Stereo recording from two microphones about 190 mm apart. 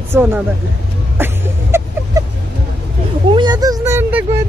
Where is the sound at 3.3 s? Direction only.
20° right (ahead or behind).